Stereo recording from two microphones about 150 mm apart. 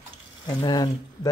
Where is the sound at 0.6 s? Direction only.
30° left (ahead or behind).